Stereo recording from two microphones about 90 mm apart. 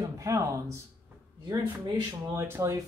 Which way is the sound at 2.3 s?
35° right (ahead or behind).